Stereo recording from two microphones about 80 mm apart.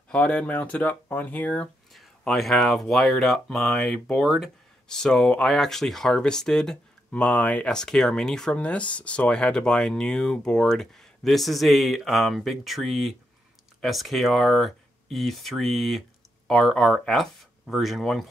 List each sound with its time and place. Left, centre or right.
0.1 s speech: centre
2.0 s speech: centre